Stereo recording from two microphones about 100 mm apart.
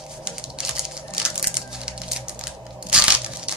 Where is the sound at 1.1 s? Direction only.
10° right (ahead or behind).